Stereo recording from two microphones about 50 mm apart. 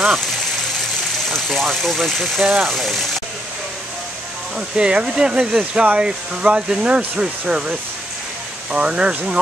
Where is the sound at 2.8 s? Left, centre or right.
Centre.